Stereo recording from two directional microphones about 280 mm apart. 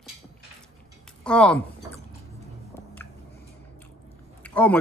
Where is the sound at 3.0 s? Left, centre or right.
Centre.